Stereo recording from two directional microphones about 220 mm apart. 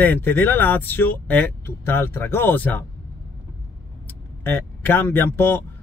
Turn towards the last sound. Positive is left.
turn(degrees=10)  # may be behind; listen again after turning